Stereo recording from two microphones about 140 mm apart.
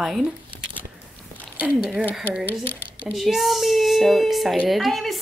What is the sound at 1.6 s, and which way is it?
Speech, 5° right (ahead or behind).